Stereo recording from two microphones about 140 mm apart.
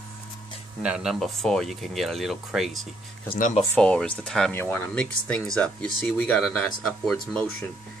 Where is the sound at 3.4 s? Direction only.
60° left (ahead or behind).